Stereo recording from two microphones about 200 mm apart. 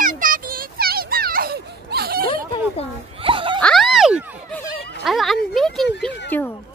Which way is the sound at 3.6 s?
5° left (ahead or behind).